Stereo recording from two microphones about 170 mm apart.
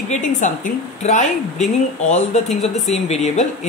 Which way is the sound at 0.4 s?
45° left (ahead or behind).